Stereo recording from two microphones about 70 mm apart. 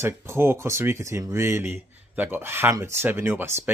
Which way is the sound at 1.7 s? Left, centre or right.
Right.